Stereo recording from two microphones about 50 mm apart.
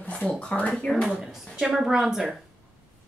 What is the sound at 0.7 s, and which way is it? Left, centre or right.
Speech, centre.